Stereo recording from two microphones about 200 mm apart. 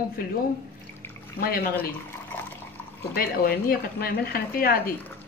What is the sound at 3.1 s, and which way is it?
A woman's voice, 50° left (ahead or behind).